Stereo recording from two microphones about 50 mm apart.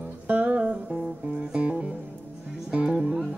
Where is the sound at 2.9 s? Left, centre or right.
Centre.